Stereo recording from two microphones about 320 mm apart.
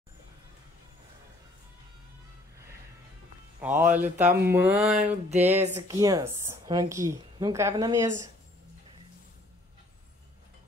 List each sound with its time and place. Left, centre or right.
3.6 s a woman's voice: centre
4.9 s a sound: right
5.8 s a woman's voice: centre